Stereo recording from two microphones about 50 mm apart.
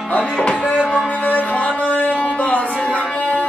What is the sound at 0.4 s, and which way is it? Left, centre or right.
Music, left.